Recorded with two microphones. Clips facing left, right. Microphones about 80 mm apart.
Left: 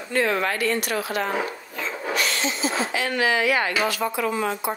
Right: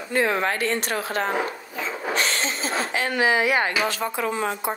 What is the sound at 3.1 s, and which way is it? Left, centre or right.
A woman's voice, right.